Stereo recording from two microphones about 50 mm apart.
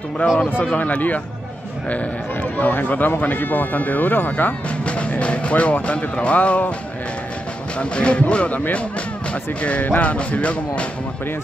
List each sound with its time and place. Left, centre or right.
0.2 s speech: left
2.4 s speech: left
4.6 s music: left
5.2 s speech: left
7.8 s speech: left